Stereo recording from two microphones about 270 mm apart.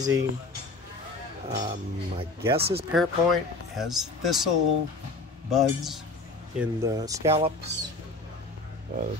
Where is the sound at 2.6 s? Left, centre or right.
Right.